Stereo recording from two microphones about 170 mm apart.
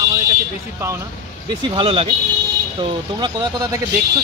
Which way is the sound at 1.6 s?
30° right (ahead or behind).